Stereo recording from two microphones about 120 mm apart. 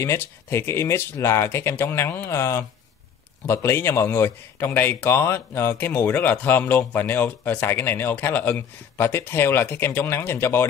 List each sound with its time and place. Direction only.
0.0 s speech: 20° left (ahead or behind)